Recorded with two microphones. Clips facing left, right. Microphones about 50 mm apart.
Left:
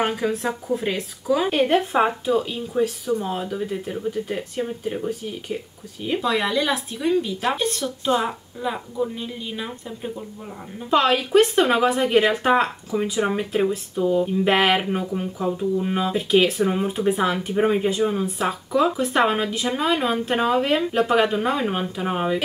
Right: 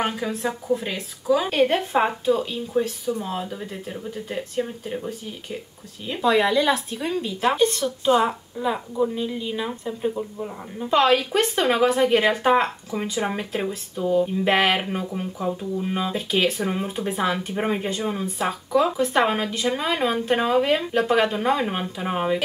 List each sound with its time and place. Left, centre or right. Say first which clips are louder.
0.0 s a woman's voice: left 2 dB; centre
3.4 s a woman's voice: left 5 dB; centre